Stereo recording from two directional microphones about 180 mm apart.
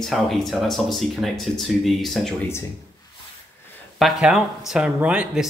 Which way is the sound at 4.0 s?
Centre (ahead or behind).